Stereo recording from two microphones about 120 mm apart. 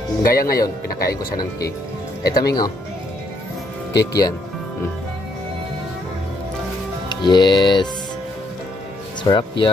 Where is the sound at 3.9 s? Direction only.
30° left (ahead or behind).